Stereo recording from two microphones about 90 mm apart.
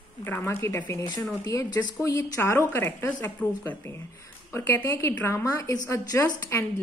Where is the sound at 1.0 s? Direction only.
45° left (ahead or behind).